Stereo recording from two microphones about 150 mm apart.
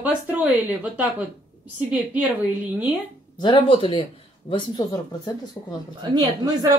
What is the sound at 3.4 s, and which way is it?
Speech, 30° left (ahead or behind).